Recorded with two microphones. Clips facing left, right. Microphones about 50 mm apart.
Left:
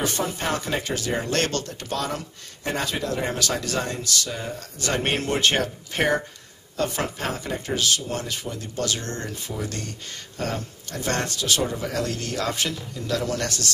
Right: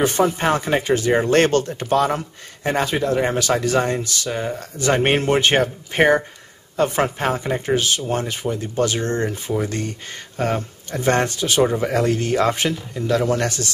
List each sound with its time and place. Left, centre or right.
0.0 s speech: right